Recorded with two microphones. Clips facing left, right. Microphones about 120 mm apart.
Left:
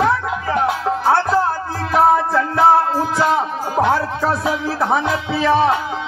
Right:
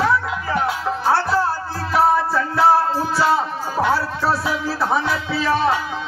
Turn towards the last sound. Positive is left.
turn(degrees=20)  # may be behind; listen again after turning